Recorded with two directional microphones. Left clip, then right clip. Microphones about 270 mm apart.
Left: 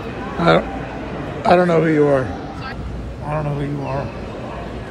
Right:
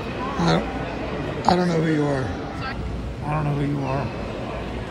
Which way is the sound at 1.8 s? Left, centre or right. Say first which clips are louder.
Left 8 dB; left.